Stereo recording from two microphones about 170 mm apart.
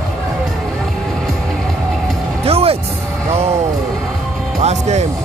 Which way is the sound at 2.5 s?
35° right (ahead or behind).